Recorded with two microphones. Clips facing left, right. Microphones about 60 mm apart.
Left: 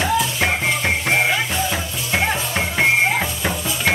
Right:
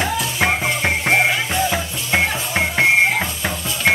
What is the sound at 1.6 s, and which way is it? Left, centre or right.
Music, centre.